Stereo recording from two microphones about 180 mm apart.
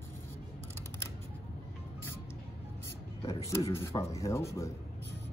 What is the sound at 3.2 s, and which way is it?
Speech, 20° left (ahead or behind).